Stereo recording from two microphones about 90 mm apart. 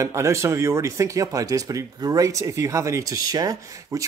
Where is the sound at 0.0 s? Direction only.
35° right (ahead or behind).